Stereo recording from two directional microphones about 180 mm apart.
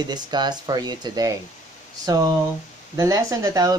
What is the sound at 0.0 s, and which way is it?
Speech, 25° right (ahead or behind).